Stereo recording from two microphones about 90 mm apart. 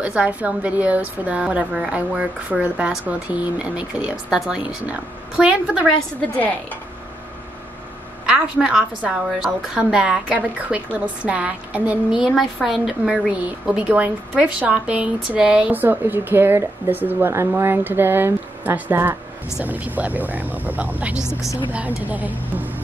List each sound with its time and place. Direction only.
0.0 s speech: 15° right (ahead or behind)
5.8 s a woman's voice: 10° left (ahead or behind)
8.3 s a woman's voice: 5° right (ahead or behind)